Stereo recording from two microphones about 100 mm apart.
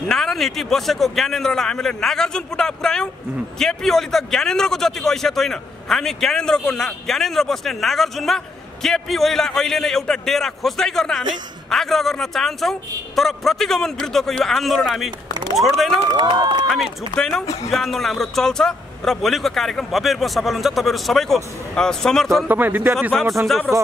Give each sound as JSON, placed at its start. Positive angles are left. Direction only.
{"t": 0.1, "sound": "a man's voice", "side_deg": 5}
{"t": 22.5, "sound": "a man's voice", "side_deg": -20}